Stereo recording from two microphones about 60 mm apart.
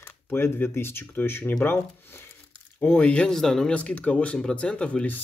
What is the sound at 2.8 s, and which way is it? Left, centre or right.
Speech, left.